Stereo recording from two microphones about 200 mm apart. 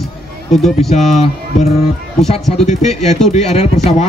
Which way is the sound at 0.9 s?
35° left (ahead or behind).